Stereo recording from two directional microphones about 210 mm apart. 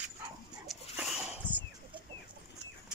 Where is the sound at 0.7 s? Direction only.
5° right (ahead or behind).